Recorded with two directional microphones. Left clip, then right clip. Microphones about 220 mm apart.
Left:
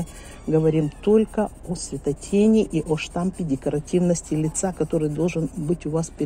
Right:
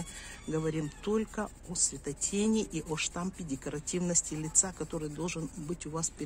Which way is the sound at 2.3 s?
20° right (ahead or behind).